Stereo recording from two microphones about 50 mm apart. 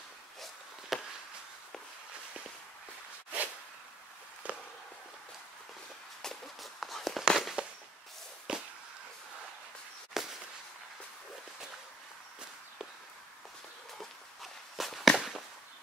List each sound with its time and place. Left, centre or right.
0.4 s walk: centre
4.4 s a sound: right
6.2 s walk: centre
7.2 s fireworks: centre
8.5 s a sound: centre
10.1 s firecracker: centre
13.9 s walk: centre
15.1 s firecracker: centre